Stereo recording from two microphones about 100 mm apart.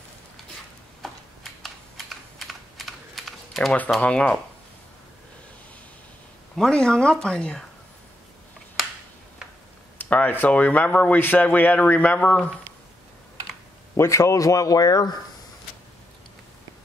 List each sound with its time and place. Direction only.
1.0 s typing: centre (ahead or behind)
4.0 s speech: 10° left (ahead or behind)
6.5 s speech: 5° left (ahead or behind)
9.9 s speech: 15° left (ahead or behind)
13.9 s a man's voice: 30° left (ahead or behind)